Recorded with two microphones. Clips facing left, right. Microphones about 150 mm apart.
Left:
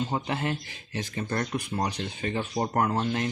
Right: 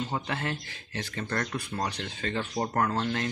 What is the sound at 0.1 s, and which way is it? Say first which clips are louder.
Speech: left 3 dB; 20° left (ahead or behind).